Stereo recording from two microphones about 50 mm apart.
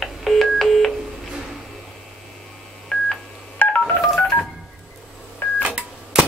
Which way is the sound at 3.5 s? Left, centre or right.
Left.